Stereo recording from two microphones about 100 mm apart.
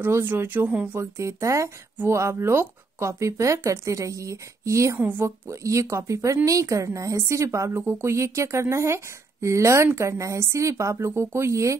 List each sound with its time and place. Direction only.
0.0 s speech: 20° right (ahead or behind)
1.1 s speech: 30° right (ahead or behind)